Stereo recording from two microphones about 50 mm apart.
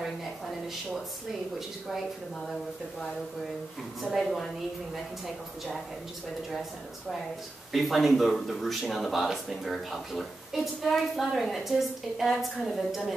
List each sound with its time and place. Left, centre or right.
0.0 s a sound: centre
2.4 s speech: centre
7.7 s speech: centre